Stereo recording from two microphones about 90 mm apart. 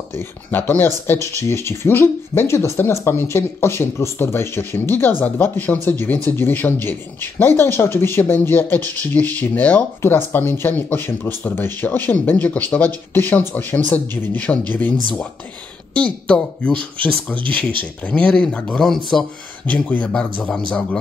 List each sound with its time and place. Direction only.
0.1 s speech: 20° left (ahead or behind); by 19.2 s 5° left (ahead or behind)
19.9 s speech: 15° left (ahead or behind)